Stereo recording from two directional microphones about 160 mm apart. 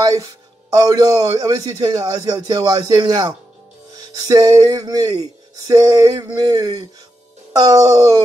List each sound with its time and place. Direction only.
0.0 s speech: 20° right (ahead or behind)